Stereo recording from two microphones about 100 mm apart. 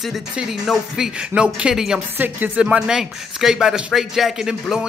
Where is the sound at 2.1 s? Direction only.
15° right (ahead or behind).